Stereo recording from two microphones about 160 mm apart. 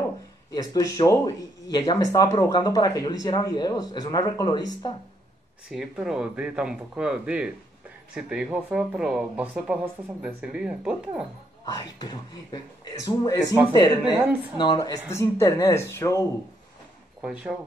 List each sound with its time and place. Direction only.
0.5 s speech: 20° left (ahead or behind)
5.7 s speech: 5° right (ahead or behind)
11.7 s speech: 25° left (ahead or behind)
14.0 s a woman's voice: 5° right (ahead or behind)
14.6 s speech: 25° left (ahead or behind)
17.2 s speech: 5° right (ahead or behind)